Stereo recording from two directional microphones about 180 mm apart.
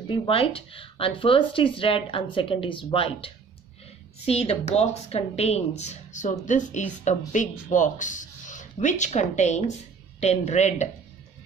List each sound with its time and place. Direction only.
0.1 s speech: 30° left (ahead or behind)